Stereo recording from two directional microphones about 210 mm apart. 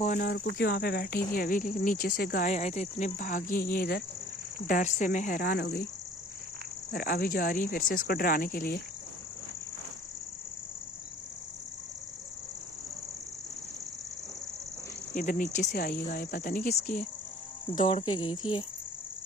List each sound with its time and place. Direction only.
0.0 s speech: 40° left (ahead or behind)
6.9 s speech: 45° left (ahead or behind)
15.1 s speech: 40° left (ahead or behind)
17.7 s speech: 25° left (ahead or behind)